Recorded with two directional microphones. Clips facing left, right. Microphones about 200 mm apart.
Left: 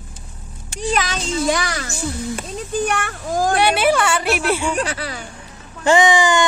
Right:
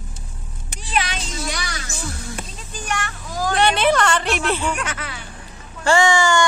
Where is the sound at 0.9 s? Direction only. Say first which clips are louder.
Left 2 dB; 45° left (ahead or behind).